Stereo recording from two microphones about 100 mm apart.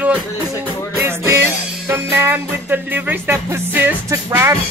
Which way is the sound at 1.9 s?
25° right (ahead or behind).